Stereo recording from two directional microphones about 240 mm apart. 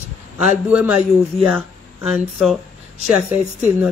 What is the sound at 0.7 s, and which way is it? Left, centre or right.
Speech, centre.